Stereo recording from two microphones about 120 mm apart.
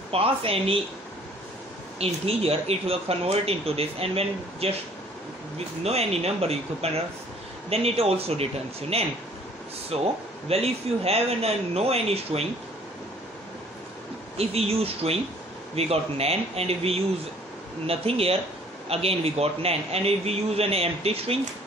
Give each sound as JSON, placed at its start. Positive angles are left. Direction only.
{"t": 0.1, "sound": "speech", "side_deg": -50}
{"t": 2.0, "sound": "speech", "side_deg": -55}
{"t": 5.9, "sound": "speech", "side_deg": -60}
{"t": 14.3, "sound": "speech", "side_deg": -60}